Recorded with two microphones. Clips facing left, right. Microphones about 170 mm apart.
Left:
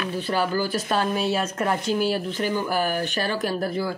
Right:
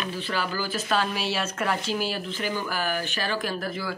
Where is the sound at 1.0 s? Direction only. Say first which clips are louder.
Left 4 dB; 45° left (ahead or behind).